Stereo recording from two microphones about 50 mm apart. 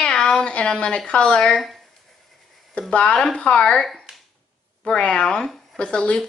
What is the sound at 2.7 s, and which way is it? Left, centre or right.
A woman's voice, centre.